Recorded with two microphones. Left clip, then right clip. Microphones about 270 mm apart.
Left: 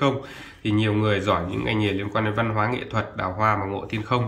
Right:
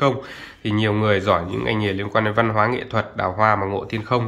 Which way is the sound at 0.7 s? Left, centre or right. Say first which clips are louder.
Right 3 dB; centre.